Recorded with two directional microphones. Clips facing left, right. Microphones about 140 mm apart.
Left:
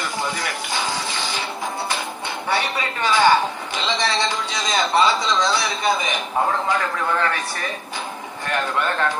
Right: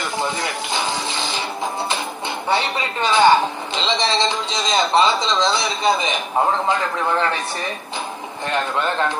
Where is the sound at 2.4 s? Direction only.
25° right (ahead or behind).